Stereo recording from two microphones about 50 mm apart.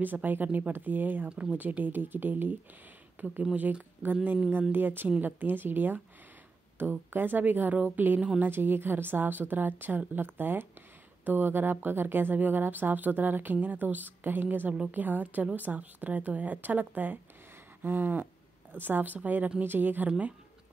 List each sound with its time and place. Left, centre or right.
0.0 s speech: right
1.3 s speech: right
1.6 s speech: right
20.1 s speech: right